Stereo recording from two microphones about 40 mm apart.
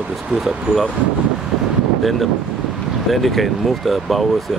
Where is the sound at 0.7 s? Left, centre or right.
Right.